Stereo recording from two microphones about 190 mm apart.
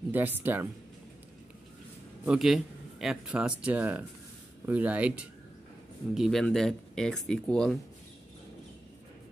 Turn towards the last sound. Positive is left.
turn(degrees=5)  # may be behind; listen again after turning